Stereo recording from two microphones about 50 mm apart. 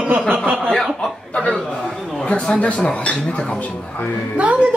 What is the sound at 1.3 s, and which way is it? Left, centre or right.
Speech, left.